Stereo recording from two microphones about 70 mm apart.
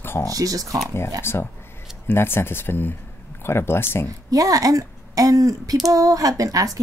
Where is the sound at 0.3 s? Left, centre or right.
Right.